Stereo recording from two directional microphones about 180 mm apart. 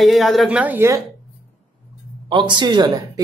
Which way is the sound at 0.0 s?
Centre (ahead or behind).